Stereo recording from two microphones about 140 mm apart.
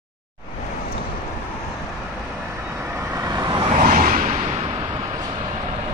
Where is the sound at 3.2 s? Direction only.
30° right (ahead or behind).